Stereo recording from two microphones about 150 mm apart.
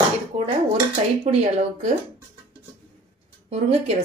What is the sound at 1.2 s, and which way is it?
Speech, 45° right (ahead or behind).